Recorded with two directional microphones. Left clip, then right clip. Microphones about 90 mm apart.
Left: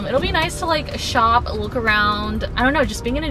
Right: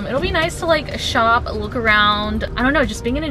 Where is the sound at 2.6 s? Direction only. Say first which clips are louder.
Right 1 dB; 5° left (ahead or behind).